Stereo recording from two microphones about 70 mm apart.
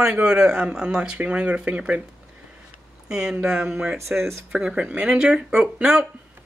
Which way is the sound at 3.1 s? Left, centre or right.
Centre.